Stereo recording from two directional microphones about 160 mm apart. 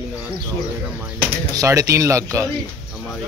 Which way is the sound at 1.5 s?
20° right (ahead or behind).